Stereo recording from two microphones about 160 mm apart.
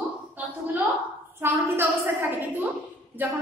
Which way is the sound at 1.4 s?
15° right (ahead or behind).